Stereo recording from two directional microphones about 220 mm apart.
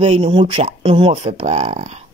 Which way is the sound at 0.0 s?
25° right (ahead or behind).